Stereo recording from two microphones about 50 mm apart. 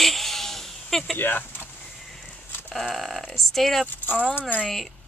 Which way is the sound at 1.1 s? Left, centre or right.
Left.